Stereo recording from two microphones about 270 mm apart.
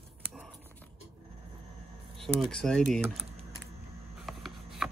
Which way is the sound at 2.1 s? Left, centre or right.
Centre.